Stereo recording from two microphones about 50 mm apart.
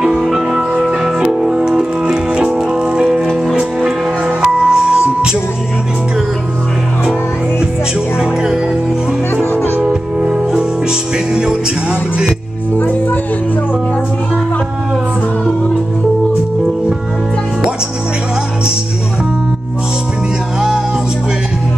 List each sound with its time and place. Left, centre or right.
0.0 s music: centre
4.4 s music: centre
9.4 s music: left
9.8 s music: right
10.3 s music: centre
12.7 s music: left